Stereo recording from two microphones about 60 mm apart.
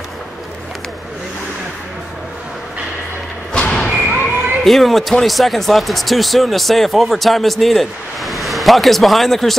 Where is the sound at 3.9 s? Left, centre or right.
Centre.